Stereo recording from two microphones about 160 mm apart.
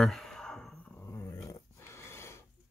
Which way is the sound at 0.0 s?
Centre (ahead or behind).